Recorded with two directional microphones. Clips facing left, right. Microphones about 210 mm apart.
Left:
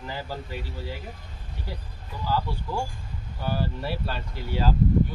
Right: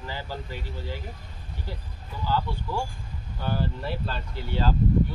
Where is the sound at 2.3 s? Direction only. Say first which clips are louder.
Even; 15° left (ahead or behind).